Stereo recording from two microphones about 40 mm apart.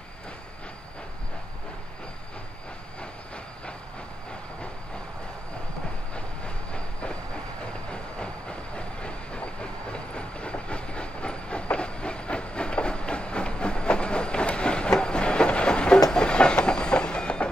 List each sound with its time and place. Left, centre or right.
6.1 s train: left